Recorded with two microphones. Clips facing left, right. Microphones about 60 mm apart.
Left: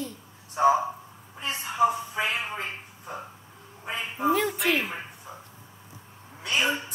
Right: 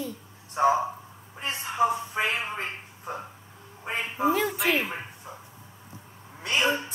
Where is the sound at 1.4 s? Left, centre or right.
Right.